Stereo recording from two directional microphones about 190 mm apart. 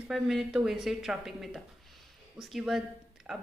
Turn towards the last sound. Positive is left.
turn(degrees=-5)  # may be behind; listen again after turning